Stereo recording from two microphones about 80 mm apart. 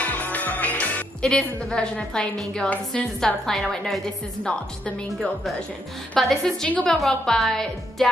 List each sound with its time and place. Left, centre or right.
0.0 s music: left
1.2 s a woman's voice: centre
6.1 s a woman's voice: centre